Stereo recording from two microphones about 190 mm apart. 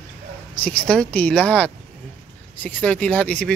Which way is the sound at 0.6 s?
5° left (ahead or behind).